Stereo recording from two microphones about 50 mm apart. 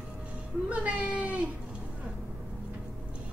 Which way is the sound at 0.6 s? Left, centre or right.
Right.